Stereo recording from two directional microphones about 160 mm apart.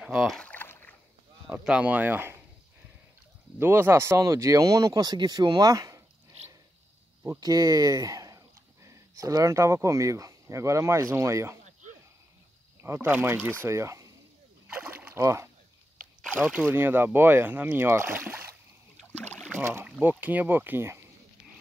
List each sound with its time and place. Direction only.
0.0 s rowboat: 5° right (ahead or behind); by 0.9 s 15° left (ahead or behind)
1.5 s speech: 5° right (ahead or behind)
3.5 s speech: 15° right (ahead or behind)
7.2 s speech: 25° right (ahead or behind)
12.8 s speech: 15° right (ahead or behind)
14.7 s boat: 10° right (ahead or behind)
16.3 s speech: 10° right (ahead or behind)